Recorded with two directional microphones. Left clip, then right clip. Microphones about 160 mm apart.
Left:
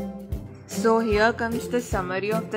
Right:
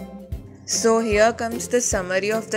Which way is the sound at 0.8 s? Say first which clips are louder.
Right 3 dB; 10° right (ahead or behind).